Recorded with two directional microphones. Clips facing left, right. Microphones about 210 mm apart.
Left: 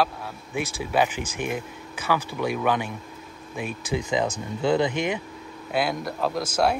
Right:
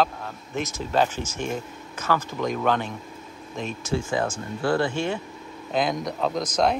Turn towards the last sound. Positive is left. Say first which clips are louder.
# even
turn(degrees=5)  # may be behind; listen again after turning